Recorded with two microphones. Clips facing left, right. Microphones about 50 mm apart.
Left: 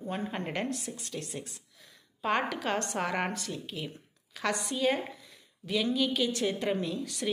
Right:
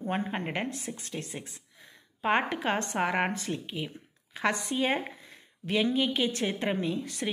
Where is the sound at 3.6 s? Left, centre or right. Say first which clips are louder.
Right 2 dB; centre.